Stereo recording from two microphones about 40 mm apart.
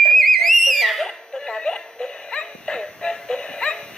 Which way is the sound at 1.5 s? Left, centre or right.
Centre.